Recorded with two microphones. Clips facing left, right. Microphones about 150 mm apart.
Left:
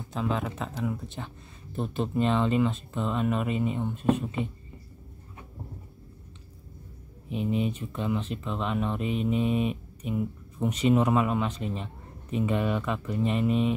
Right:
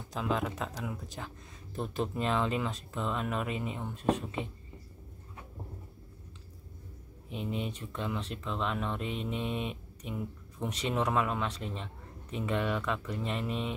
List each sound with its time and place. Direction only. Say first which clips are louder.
0.1 s speech: left 2 dB; centre (ahead or behind)
7.2 s speech: left 8 dB; centre (ahead or behind)